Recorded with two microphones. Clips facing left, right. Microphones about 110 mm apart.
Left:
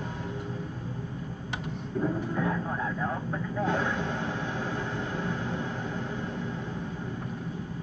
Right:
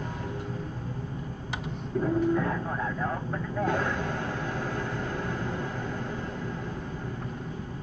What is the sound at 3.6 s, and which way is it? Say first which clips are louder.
Vehicle: right 1 dB; 15° left (ahead or behind).